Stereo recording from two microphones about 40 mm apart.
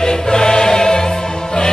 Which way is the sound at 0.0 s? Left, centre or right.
Centre.